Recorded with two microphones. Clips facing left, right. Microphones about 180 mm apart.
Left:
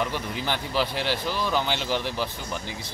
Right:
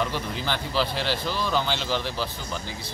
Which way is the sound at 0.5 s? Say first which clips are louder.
Even; 15° left (ahead or behind).